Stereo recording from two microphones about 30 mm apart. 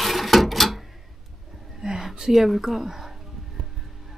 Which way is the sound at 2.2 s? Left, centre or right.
Centre.